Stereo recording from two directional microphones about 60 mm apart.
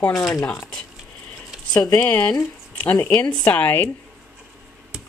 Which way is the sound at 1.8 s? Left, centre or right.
Left.